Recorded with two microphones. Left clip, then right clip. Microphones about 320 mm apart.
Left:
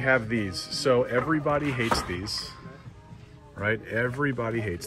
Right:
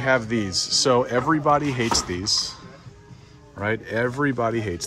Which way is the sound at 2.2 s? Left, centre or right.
Right.